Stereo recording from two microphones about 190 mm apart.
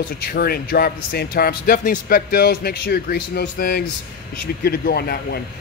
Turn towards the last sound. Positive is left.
turn(degrees=55)  # may be behind; listen again after turning